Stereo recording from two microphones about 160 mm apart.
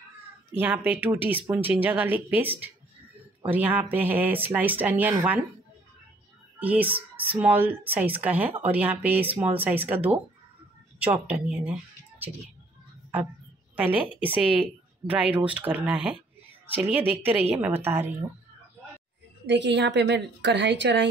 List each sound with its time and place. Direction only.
0.6 s speech: 10° right (ahead or behind)
6.6 s speech: 10° right (ahead or behind)
13.7 s a woman's voice: 10° right (ahead or behind)
19.4 s a woman's voice: 90° right